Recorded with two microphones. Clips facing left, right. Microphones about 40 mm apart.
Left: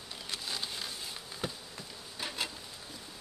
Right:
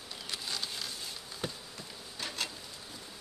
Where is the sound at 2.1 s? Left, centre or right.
Centre.